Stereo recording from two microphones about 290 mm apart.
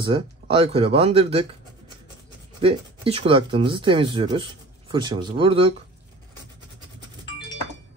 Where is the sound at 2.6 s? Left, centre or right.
Centre.